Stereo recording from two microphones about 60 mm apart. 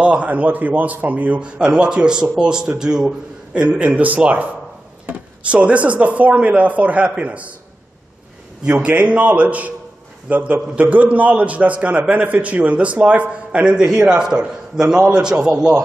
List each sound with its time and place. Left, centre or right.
0.0 s a man's voice: right
8.8 s a man's voice: right